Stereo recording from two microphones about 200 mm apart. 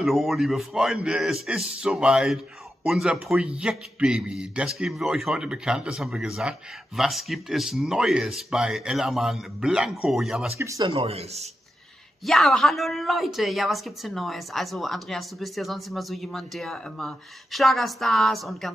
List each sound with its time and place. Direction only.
0.0 s a woman's voice: centre (ahead or behind)
10.6 s speech: 15° right (ahead or behind)
10.9 s speech: 30° right (ahead or behind)
12.3 s a woman's voice: centre (ahead or behind)